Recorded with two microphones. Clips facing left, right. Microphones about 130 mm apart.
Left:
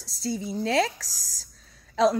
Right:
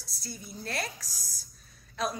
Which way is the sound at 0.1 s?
90° left.